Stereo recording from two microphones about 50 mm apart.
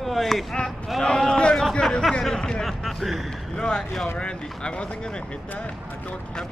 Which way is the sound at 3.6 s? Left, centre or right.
Centre.